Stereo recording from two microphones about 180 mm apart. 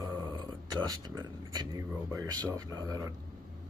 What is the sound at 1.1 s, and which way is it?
Speech, 20° right (ahead or behind).